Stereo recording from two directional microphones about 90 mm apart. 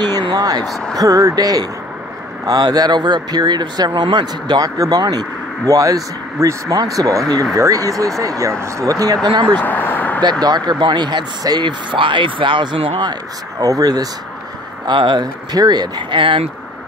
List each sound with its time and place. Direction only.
0.0 s a sound: 55° right (ahead or behind)
0.7 s speech: 5° left (ahead or behind)
0.9 s speech: 40° right (ahead or behind)
9.5 s vehicle: 20° left (ahead or behind)
10.4 s speech: 55° right (ahead or behind); by 13.1 s 75° right (ahead or behind)
13.6 s speech: 40° right (ahead or behind)
14.9 s speech: 60° right (ahead or behind)
16.2 s speech: 70° right (ahead or behind)